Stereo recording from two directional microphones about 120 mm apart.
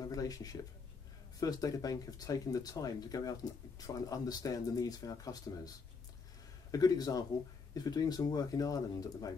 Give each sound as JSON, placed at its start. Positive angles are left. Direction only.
{"t": 0.0, "sound": "speech", "side_deg": 30}
{"t": 6.7, "sound": "speech", "side_deg": 30}